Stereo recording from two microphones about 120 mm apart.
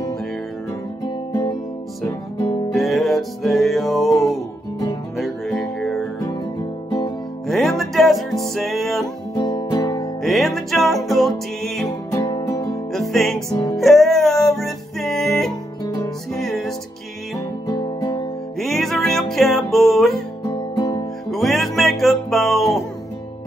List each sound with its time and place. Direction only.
2.7 s music: centre (ahead or behind)
5.1 s music: centre (ahead or behind)
7.4 s music: centre (ahead or behind)
9.3 s music: 35° left (ahead or behind)
10.2 s music: centre (ahead or behind)
12.4 s music: 30° left (ahead or behind)
12.9 s music: centre (ahead or behind)
13.5 s music: 30° left (ahead or behind)
13.7 s music: centre (ahead or behind)
17.6 s music: 30° left (ahead or behind)
18.6 s music: centre (ahead or behind)
20.4 s music: 30° left (ahead or behind)
21.3 s music: centre (ahead or behind)